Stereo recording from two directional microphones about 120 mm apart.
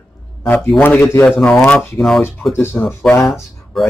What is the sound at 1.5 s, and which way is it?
A man's voice, 10° left (ahead or behind).